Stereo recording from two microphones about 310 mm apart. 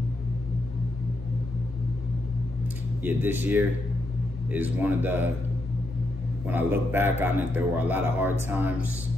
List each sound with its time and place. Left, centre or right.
3.0 s a man's voice: centre
6.4 s a man's voice: centre